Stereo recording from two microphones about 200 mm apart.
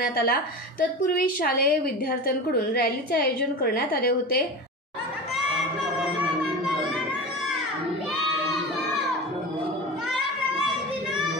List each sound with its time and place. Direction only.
0.0 s a woman's voice: 50° left (ahead or behind)